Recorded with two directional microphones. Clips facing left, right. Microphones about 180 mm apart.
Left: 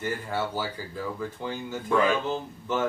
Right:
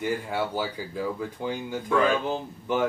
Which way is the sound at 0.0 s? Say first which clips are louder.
Right 2 dB; 15° right (ahead or behind).